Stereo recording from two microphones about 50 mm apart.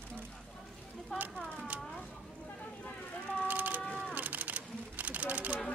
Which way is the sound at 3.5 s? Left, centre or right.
Right.